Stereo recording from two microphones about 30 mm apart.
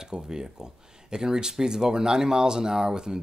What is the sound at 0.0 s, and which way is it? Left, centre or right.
Speech, right.